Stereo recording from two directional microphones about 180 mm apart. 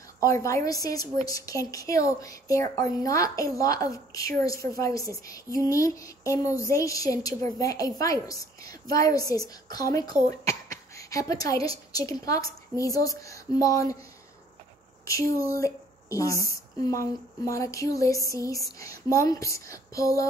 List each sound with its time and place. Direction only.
0.2 s speech: 15° left (ahead or behind)
15.4 s a woman's voice: 20° left (ahead or behind)